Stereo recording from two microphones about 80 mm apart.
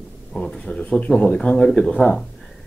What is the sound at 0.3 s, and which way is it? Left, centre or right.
Speech, centre.